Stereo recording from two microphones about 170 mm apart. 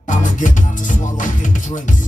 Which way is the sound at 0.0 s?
50° left (ahead or behind).